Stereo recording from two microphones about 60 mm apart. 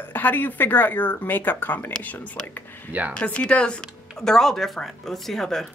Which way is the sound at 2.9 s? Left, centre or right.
Right.